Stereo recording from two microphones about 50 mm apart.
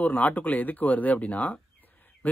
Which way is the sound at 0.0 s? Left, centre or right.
Left.